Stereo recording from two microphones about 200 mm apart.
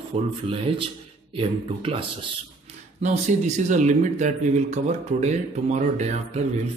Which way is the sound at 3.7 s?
35° right (ahead or behind).